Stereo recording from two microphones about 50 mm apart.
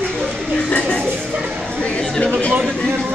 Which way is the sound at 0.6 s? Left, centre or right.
Left.